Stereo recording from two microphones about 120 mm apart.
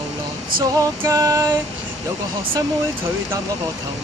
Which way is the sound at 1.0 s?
25° right (ahead or behind).